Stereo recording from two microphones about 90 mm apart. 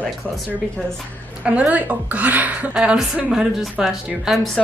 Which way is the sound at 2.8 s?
5° right (ahead or behind).